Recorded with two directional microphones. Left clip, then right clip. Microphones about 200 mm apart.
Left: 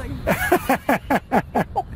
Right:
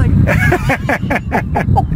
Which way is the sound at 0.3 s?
15° left (ahead or behind).